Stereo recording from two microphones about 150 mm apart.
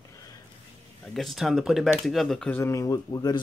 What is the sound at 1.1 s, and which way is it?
Speech, centre (ahead or behind).